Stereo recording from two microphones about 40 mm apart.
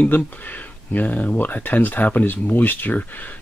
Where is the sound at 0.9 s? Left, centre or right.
Left.